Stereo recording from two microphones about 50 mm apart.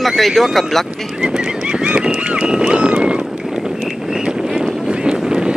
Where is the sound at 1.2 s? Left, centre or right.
Centre.